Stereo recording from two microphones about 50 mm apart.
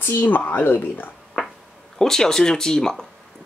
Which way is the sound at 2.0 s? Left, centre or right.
Centre.